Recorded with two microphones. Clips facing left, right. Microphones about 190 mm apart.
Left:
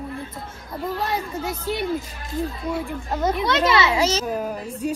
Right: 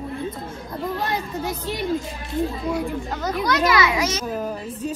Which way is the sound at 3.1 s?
25° left (ahead or behind).